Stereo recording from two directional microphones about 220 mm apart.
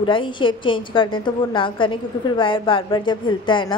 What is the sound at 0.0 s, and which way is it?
A woman's voice, 20° left (ahead or behind).